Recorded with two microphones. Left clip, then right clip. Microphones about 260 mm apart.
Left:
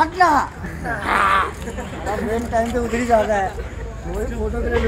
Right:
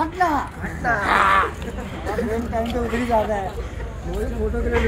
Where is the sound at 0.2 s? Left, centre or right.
Left.